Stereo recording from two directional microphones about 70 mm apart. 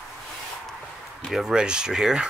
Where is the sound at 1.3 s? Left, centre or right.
Centre.